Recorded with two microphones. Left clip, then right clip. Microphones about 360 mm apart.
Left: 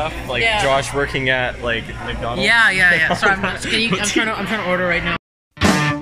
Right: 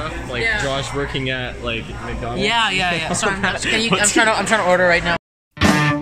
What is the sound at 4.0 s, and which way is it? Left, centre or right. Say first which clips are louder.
Speech: right 4 dB; right.